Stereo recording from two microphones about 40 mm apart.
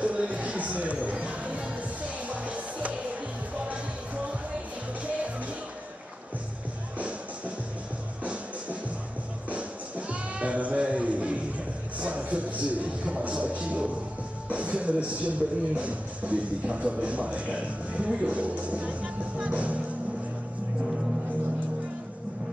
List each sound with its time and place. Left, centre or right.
0.0 s music: right
7.0 s music: right
9.5 s sheep: right
12.0 s a sound: right
14.5 s a man's voice: right